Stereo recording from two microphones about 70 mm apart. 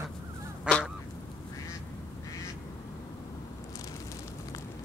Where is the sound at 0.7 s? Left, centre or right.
Centre.